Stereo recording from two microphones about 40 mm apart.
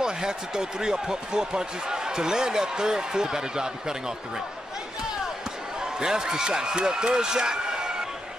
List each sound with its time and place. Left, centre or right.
0.0 s speech: centre
5.8 s speech: centre